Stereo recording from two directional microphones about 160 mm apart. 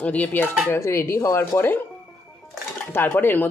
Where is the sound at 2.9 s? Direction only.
15° left (ahead or behind).